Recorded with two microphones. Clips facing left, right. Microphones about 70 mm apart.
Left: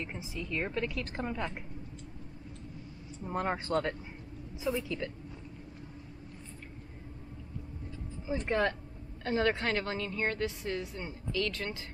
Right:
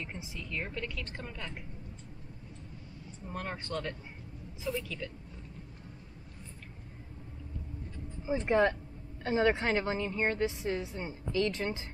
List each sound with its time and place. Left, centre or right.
0.0 s a woman's voice: centre; by 1.5 s left
3.3 s speech: left
8.3 s a woman's voice: centre